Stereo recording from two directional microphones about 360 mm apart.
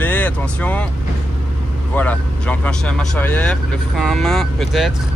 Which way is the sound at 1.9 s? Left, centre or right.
Centre.